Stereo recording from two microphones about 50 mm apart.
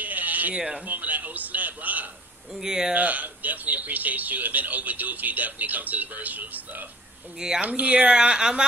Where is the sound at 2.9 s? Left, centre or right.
Right.